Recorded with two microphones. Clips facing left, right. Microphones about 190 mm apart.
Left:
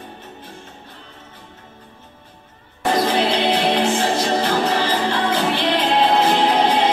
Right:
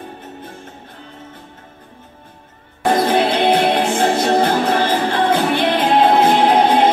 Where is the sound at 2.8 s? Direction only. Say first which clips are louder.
Right 3 dB; 55° right (ahead or behind).